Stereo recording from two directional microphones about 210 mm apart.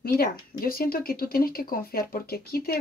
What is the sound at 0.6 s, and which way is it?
Speech, 45° left (ahead or behind).